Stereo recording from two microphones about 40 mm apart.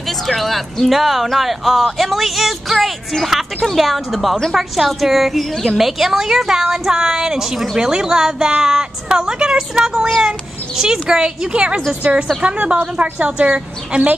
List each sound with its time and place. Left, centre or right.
0.3 s a woman's voice: centre; by 12.7 s right
13.0 s a woman's voice: right
13.9 s a woman's voice: right